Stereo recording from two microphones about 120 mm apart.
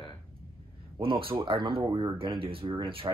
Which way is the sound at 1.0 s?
45° right (ahead or behind).